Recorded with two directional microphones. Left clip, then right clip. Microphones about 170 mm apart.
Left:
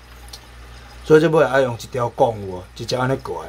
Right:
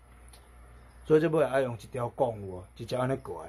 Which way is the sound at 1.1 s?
Centre (ahead or behind).